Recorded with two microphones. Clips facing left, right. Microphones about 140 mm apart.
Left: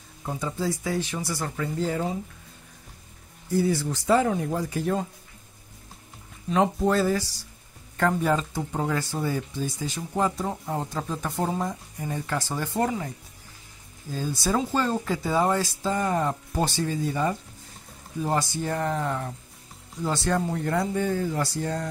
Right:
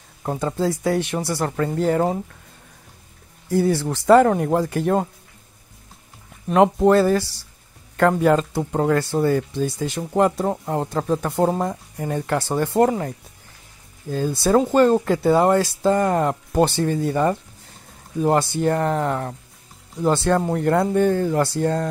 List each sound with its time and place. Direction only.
0.2 s speech: 60° right (ahead or behind)
3.4 s speech: 65° right (ahead or behind)
6.4 s speech: 65° right (ahead or behind)
14.1 s speech: 60° right (ahead or behind)